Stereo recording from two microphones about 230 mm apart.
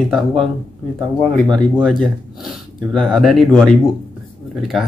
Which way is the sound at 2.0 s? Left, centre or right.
Centre.